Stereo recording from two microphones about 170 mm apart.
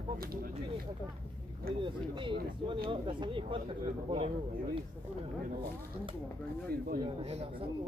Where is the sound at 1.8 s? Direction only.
30° right (ahead or behind).